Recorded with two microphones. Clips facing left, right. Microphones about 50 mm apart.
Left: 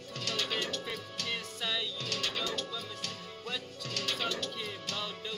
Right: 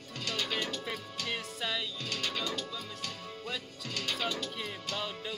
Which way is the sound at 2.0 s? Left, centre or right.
Centre.